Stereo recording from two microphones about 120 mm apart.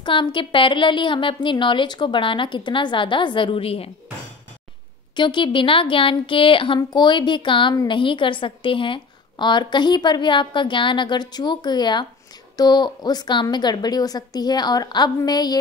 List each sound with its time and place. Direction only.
0.0 s a woman's voice: 40° left (ahead or behind)
5.1 s a woman's voice: 40° left (ahead or behind)